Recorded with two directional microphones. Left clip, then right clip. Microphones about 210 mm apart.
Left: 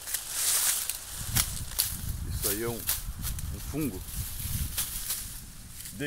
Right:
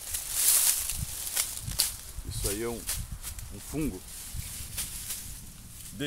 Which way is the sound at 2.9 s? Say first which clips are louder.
Left 2 dB; 35° left (ahead or behind).